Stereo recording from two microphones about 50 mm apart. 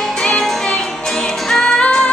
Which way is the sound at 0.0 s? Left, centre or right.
Centre.